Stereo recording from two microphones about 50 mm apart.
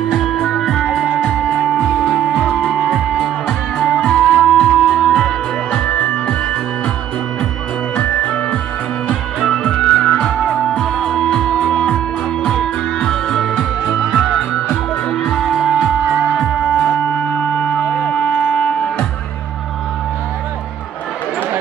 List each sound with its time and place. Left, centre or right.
0.1 s music: centre
0.4 s music: centre
4.9 s music: centre
5.7 s music: left
7.9 s music: left
12.4 s music: centre
14.7 s music: centre
15.5 s music: centre
17.3 s music: left